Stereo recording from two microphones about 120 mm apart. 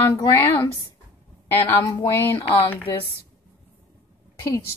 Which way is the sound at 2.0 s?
20° left (ahead or behind).